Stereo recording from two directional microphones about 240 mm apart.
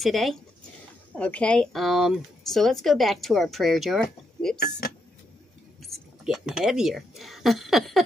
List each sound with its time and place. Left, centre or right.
0.0 s speech: centre
4.6 s speech: left
5.8 s speech: centre